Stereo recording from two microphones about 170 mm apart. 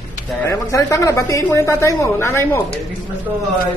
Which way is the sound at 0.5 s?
20° left (ahead or behind).